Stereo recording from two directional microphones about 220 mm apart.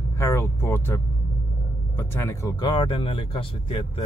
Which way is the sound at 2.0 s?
10° left (ahead or behind).